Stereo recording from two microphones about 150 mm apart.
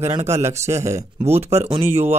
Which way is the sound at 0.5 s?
20° right (ahead or behind).